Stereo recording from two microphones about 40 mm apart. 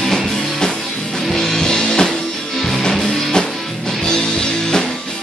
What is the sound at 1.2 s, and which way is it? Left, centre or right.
Music, centre.